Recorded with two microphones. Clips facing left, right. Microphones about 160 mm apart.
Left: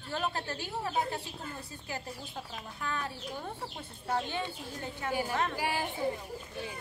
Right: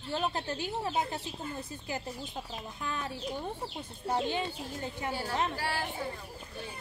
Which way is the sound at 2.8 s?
20° right (ahead or behind).